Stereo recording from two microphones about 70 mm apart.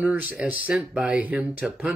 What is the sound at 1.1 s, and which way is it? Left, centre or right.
Speech, right.